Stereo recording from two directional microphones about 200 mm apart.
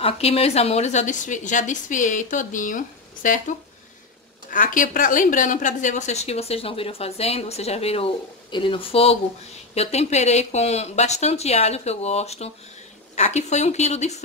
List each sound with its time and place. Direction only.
0.0 s a woman's voice: 30° left (ahead or behind)